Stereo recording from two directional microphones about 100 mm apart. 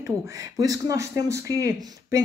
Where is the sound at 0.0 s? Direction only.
35° right (ahead or behind).